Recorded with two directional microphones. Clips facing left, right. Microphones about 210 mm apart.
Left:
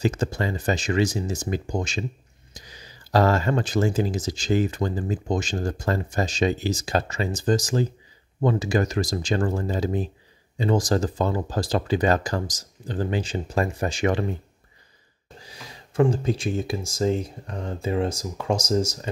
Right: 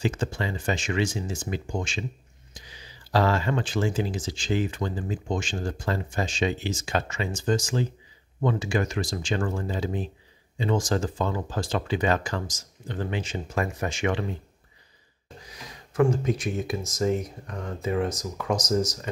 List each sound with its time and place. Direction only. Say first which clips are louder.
0.0 s speech: left 3 dB; 40° left (ahead or behind)
15.4 s speech: left 2 dB; 30° left (ahead or behind)